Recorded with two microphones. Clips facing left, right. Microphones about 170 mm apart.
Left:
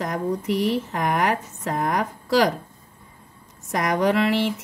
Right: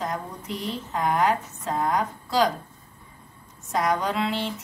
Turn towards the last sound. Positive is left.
turn(degrees=85)